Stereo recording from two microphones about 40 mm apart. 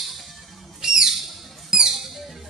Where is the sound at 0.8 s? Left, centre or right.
Centre.